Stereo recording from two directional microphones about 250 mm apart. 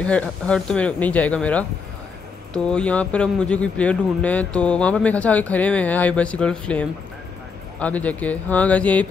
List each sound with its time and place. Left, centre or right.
0.0 s speech: centre